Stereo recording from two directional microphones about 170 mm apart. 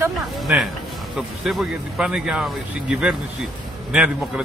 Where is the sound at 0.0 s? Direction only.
10° right (ahead or behind).